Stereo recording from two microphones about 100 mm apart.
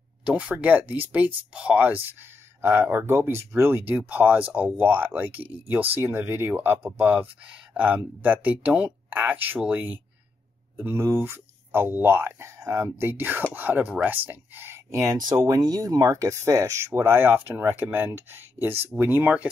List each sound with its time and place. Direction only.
0.2 s speech: 10° right (ahead or behind); by 12.9 s 30° right (ahead or behind)
13.0 s speech: 20° right (ahead or behind)